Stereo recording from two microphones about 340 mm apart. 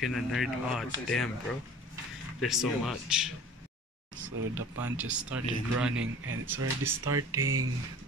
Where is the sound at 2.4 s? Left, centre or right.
Centre.